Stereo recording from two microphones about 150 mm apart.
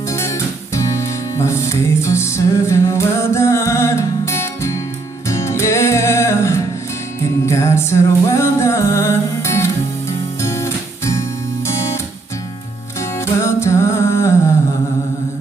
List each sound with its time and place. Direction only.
0.1 s music: 20° left (ahead or behind)
13.2 s music: 20° left (ahead or behind)